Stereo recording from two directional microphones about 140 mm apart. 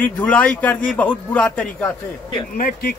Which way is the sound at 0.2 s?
10° left (ahead or behind).